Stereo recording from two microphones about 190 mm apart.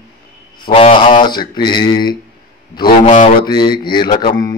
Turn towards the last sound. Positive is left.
turn(degrees=20)  # may be behind; listen again after turning